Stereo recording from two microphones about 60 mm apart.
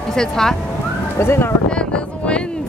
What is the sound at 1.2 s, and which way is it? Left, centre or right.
Speech, left.